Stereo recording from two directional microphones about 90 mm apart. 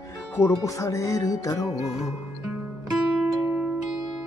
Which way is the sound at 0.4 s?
35° left (ahead or behind).